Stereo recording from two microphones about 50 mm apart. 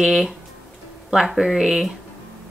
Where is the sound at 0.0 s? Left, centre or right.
Centre.